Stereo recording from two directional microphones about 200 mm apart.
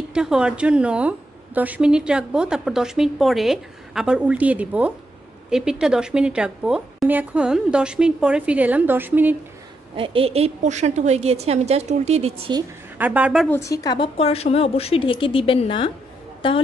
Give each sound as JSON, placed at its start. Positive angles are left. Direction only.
{"t": 0.1, "sound": "a woman's voice", "side_deg": -5}
{"t": 9.9, "sound": "a woman's voice", "side_deg": -25}
{"t": 12.9, "sound": "speech", "side_deg": -10}
{"t": 13.5, "sound": "a woman's voice", "side_deg": 15}